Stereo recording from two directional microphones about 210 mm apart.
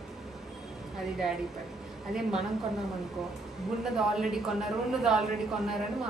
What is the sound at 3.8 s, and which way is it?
Speech, centre (ahead or behind).